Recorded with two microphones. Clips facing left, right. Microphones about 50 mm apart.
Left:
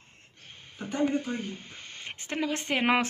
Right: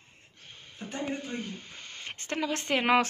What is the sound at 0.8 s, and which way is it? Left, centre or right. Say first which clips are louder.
Speech: left 7 dB; left.